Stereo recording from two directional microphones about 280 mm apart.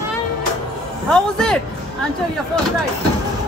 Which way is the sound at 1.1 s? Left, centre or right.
Centre.